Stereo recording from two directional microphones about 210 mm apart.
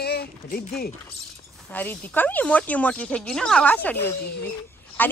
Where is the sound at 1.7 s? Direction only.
10° left (ahead or behind).